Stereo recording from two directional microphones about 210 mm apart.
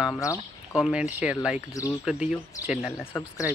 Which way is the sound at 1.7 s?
15° left (ahead or behind).